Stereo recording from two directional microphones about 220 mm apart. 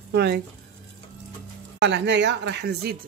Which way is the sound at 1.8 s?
50° right (ahead or behind).